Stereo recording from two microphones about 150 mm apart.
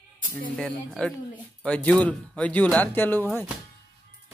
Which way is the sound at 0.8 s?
5° left (ahead or behind).